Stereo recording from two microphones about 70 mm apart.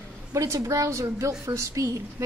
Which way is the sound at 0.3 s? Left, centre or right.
Right.